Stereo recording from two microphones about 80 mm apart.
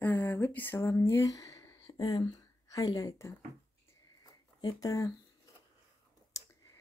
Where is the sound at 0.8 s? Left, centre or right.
Left.